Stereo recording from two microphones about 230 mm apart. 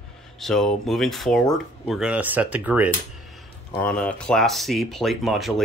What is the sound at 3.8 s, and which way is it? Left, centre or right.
Speech, centre.